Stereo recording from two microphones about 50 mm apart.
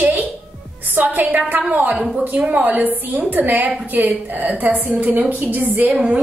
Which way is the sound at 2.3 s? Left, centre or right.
Right.